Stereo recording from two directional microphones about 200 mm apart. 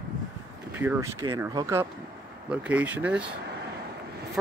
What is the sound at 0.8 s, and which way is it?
Speech, 15° right (ahead or behind).